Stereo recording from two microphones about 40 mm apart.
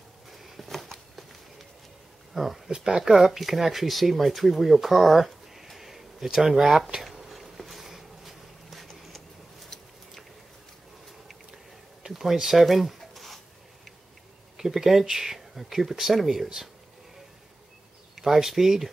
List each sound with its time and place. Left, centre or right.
0.3 s a sound: centre
1.1 s run: centre
2.3 s speech: centre
7.0 s a sound: centre
12.1 s zipper: centre
14.6 s speech: centre
18.1 s speech: centre